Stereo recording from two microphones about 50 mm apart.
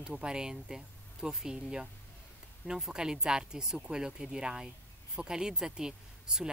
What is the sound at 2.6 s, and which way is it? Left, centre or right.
Speech, centre.